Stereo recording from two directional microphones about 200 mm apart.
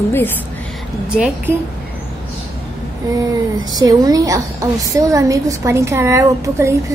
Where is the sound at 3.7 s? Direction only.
20° right (ahead or behind).